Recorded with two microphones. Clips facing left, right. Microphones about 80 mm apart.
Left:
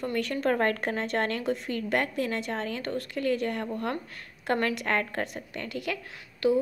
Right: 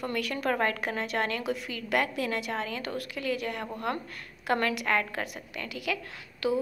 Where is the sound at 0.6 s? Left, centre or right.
Left.